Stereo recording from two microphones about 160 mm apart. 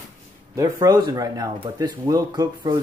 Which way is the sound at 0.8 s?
25° right (ahead or behind).